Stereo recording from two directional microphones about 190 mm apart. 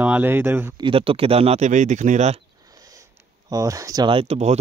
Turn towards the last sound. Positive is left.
turn(degrees=-35)  # may be behind; listen again after turning